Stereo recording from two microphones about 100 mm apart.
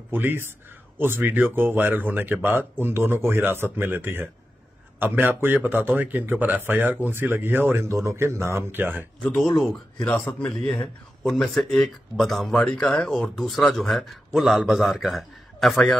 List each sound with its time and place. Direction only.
0.1 s speech: 20° right (ahead or behind)
9.7 s speech: 10° left (ahead or behind)